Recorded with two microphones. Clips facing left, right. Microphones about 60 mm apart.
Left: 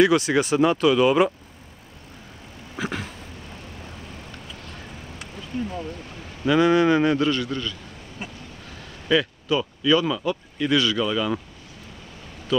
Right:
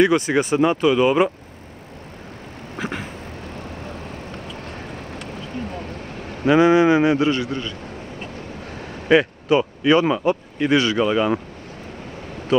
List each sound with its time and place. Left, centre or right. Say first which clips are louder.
0.1 s speech: right 1 dB; centre
0.5 s speech: right 1 dB; centre
2.8 s vehicle: right 1 dB; centre
4.6 s vehicle: right 6 dB; right
6.4 s speech: right 4 dB; right
8.7 s speech: right 6 dB; right